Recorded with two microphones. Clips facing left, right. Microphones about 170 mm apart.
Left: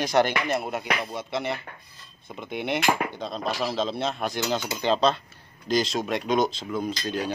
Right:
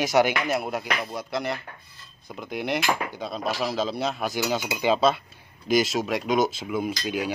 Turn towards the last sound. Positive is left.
turn(degrees=-10)  # may be behind; listen again after turning